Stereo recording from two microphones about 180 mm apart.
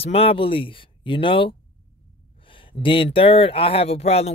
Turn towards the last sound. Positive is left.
turn(degrees=35)  # may be behind; listen again after turning